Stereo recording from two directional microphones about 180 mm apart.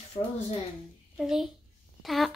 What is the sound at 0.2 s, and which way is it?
Speech, 25° left (ahead or behind).